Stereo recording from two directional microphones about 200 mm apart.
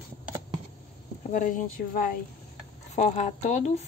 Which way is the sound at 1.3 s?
40° left (ahead or behind).